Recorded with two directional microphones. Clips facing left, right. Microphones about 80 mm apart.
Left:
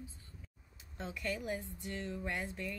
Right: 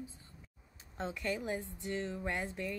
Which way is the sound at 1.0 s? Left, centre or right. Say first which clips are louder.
Right 3 dB; right.